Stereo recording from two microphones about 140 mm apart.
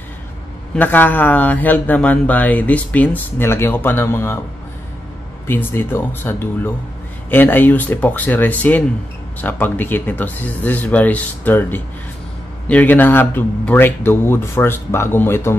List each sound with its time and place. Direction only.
0.7 s speech: 15° left (ahead or behind)
5.5 s speech: 15° left (ahead or behind)